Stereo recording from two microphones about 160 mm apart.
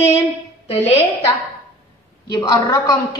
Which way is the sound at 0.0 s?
20° left (ahead or behind).